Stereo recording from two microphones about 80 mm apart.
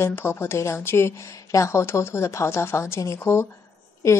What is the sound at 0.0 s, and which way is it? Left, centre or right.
A woman's voice, left.